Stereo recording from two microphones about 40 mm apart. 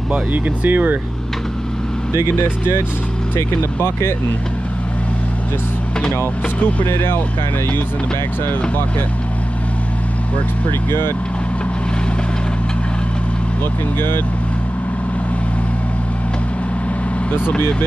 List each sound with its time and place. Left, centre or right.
0.3 s speech: right
6.6 s speech: left
10.9 s speech: left
13.9 s speech: left